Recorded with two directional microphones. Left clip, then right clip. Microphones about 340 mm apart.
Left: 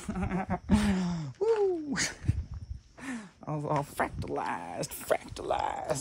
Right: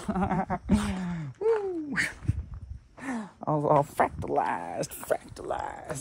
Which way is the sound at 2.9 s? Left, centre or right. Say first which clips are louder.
Right 5 dB; centre.